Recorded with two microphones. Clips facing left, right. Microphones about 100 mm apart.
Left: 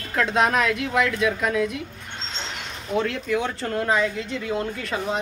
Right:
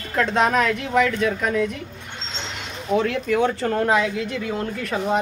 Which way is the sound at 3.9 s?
65° right (ahead or behind).